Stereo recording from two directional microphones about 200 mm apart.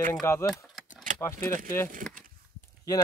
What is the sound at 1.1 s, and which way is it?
Keys jangling, 45° right (ahead or behind).